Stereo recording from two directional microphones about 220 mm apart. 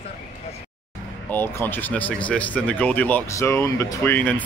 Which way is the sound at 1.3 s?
10° left (ahead or behind).